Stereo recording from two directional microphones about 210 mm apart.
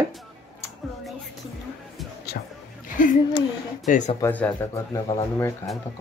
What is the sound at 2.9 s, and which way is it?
Speech, 40° left (ahead or behind).